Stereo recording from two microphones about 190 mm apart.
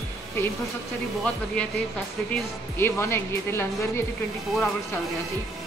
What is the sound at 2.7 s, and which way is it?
A woman's voice, 15° left (ahead or behind).